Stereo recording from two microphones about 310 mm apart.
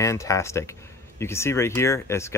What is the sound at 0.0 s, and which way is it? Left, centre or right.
Speech, centre.